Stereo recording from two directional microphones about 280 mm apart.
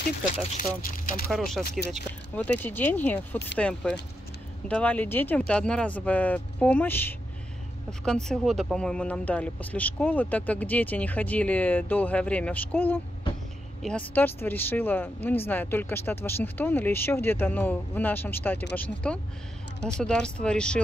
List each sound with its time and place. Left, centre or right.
0.6 s speech: left
1.3 s speech: centre